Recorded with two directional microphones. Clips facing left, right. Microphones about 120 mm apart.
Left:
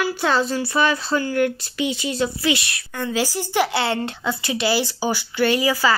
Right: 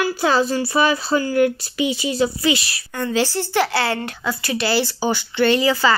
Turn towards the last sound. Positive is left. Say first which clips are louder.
# right 2 dB
turn(degrees=10)  # may be behind; listen again after turning